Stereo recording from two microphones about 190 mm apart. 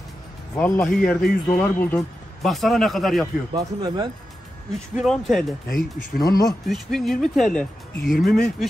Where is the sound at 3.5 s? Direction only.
20° right (ahead or behind).